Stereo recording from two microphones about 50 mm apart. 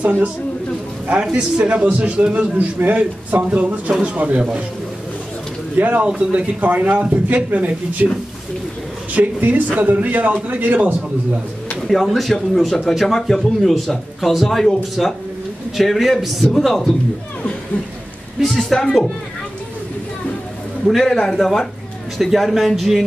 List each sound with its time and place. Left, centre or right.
0.0 s a man's voice: right
1.3 s speech: right
2.6 s a man's voice: right
5.8 s a man's voice: right
9.1 s a man's voice: right
11.9 s speech: centre
18.4 s speech: centre
20.8 s a man's voice: centre